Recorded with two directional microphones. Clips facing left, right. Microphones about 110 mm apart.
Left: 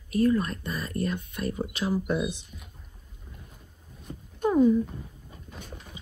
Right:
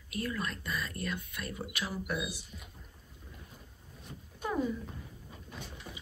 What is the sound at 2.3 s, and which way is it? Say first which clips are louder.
Speech: left 7 dB; 10° right (ahead or behind).